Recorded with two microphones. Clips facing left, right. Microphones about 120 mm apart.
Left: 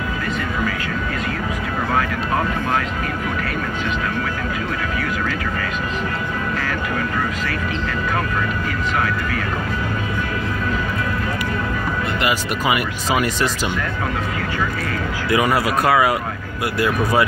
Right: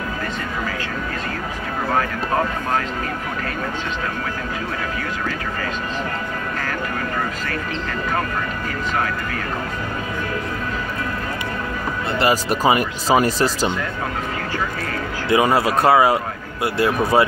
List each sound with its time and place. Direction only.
12.2 s speech: 35° right (ahead or behind)
15.2 s speech: 25° right (ahead or behind)